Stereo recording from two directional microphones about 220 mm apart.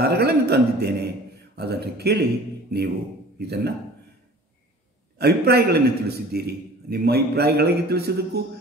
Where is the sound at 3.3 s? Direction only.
50° right (ahead or behind).